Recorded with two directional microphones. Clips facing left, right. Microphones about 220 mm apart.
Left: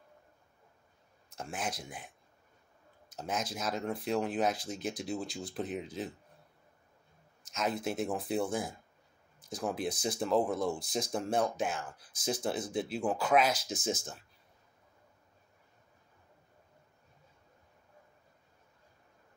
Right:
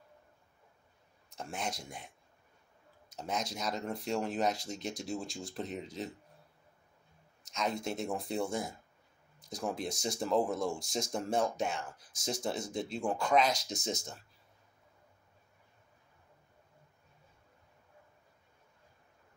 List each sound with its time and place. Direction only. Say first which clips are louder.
1.3 s speech: left 1 dB; centre (ahead or behind)
3.2 s speech: left 1 dB; 5° left (ahead or behind)
7.4 s speech: left 1 dB; 5° left (ahead or behind)